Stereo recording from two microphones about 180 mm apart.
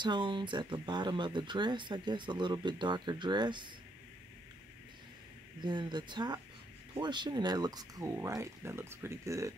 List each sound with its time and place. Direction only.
0.0 s speech: 25° right (ahead or behind)
5.6 s speech: 25° right (ahead or behind)